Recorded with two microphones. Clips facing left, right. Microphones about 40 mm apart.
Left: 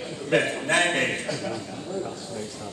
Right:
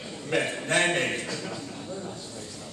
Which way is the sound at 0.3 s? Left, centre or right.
Left.